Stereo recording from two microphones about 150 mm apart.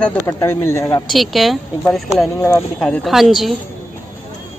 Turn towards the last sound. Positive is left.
turn(degrees=0)  # may be behind; listen again after turning